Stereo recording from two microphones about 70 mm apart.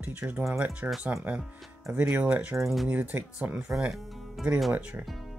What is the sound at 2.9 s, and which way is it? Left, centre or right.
Speech, right.